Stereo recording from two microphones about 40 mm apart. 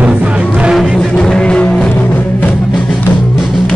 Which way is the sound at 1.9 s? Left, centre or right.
Left.